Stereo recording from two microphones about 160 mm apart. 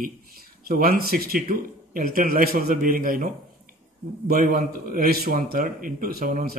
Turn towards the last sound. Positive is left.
turn(degrees=-65)  # may be behind; listen again after turning